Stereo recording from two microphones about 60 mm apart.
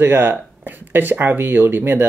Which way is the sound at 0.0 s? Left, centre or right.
Right.